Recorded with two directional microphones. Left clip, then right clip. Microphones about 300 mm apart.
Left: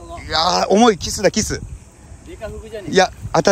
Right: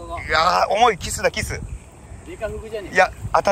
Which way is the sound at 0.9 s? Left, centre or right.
Centre.